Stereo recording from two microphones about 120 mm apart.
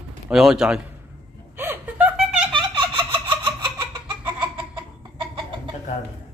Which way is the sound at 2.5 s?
45° right (ahead or behind).